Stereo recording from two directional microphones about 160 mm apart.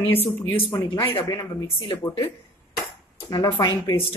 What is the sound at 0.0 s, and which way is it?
Speech, 15° left (ahead or behind).